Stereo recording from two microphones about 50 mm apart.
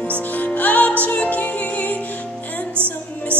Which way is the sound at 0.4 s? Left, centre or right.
Left.